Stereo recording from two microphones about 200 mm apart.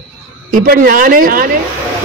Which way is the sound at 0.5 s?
45° right (ahead or behind).